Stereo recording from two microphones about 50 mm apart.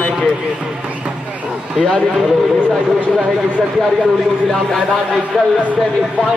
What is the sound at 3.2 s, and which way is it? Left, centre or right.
Speech, centre.